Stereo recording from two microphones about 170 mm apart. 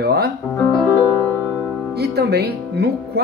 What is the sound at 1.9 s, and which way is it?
A man's voice, 70° right (ahead or behind).